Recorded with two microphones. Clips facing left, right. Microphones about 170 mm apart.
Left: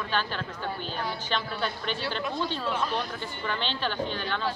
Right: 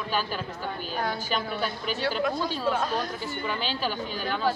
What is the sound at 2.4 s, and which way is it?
Speech, 45° right (ahead or behind).